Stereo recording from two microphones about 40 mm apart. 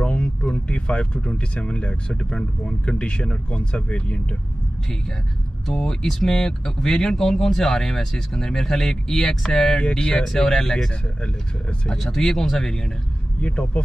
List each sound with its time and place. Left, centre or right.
0.0 s a sound: left
0.7 s speech: left
5.7 s speech: centre
9.8 s speech: left
10.2 s speech: centre
12.0 s speech: centre
13.4 s speech: left